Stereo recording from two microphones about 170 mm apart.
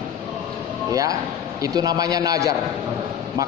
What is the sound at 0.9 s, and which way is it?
A man's voice, 20° right (ahead or behind).